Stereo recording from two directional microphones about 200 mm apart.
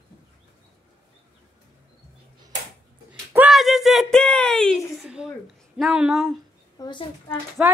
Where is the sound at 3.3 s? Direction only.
5° right (ahead or behind).